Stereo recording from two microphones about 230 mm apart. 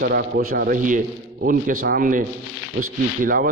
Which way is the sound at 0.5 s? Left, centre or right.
Right.